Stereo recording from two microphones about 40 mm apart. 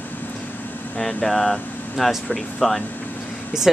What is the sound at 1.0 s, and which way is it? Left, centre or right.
Speech, centre.